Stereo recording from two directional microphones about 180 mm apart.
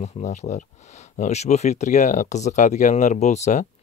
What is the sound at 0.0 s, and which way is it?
Speech, 40° left (ahead or behind).